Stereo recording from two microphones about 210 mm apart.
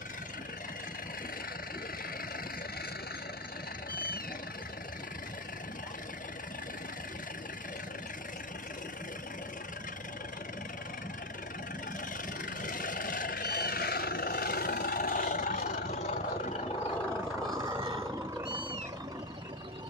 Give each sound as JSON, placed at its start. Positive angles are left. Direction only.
{"t": 12.6, "sound": "vehicle", "side_deg": 40}
{"t": 18.4, "sound": "music", "side_deg": -20}